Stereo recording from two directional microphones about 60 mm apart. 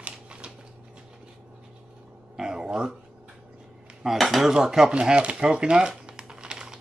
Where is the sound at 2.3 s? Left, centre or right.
Centre.